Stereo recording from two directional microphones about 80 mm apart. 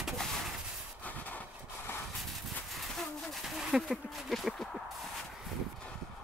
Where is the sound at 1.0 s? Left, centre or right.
Left.